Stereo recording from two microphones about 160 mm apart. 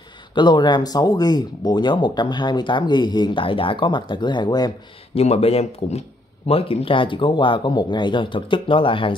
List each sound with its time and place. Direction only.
0.3 s speech: 25° left (ahead or behind)
5.1 s speech: 40° left (ahead or behind)